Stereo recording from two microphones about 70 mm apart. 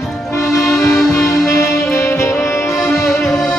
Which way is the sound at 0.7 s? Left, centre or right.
Left.